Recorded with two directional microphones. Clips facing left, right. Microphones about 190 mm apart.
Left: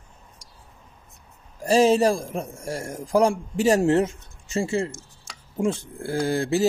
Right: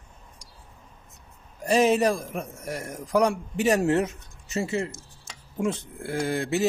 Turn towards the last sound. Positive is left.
turn(degrees=30)  # may be behind; listen again after turning